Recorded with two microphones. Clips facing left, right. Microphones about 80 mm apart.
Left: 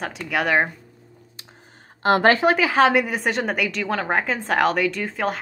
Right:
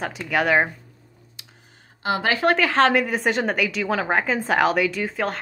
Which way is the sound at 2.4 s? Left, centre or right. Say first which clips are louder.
Left 1 dB; centre.